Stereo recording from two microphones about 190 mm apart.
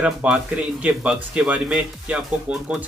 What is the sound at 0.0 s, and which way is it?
Speech, 5° right (ahead or behind).